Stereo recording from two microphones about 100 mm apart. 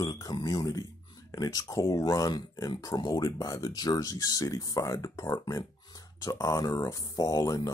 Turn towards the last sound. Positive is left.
turn(degrees=35)  # may be behind; listen again after turning